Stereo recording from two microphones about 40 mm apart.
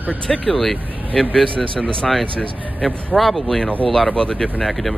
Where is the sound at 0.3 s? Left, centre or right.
Centre.